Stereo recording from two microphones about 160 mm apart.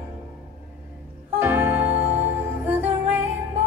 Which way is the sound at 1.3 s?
15° right (ahead or behind).